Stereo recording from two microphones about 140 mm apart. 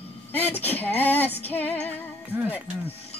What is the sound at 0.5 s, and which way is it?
Speech, 15° left (ahead or behind).